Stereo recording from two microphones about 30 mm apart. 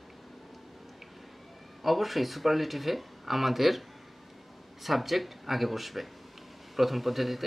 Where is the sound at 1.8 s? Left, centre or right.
Centre.